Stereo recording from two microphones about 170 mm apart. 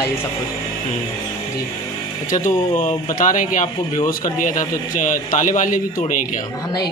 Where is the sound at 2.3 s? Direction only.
50° left (ahead or behind).